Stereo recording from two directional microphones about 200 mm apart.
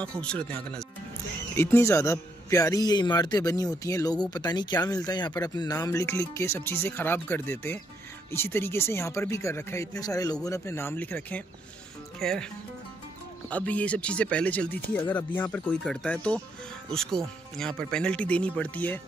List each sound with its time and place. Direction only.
0.0 s a man's voice: 5° left (ahead or behind)
13.5 s a man's voice: 5° left (ahead or behind)